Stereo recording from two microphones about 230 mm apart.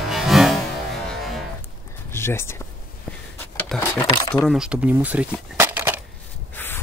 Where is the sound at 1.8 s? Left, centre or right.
Centre.